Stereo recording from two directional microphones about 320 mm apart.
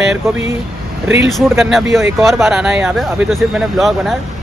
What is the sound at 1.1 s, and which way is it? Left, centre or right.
Speech, centre.